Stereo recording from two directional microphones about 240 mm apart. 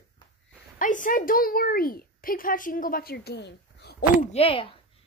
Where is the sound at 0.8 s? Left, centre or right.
Left.